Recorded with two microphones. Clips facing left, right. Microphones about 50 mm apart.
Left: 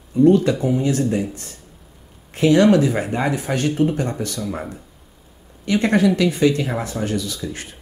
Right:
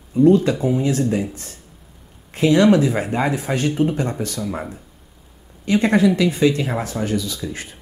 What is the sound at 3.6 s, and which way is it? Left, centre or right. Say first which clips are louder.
Speech: left 1 dB; right.